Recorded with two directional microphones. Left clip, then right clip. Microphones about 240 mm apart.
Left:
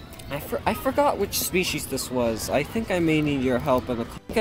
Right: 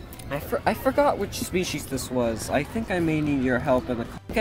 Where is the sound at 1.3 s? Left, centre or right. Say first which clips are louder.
Left 3 dB; centre.